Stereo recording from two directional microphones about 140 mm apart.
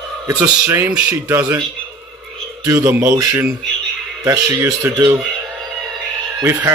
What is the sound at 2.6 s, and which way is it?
Speech, 20° right (ahead or behind).